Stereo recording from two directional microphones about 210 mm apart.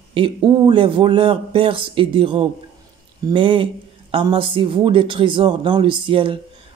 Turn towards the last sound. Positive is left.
turn(degrees=-25)  # may be behind; listen again after turning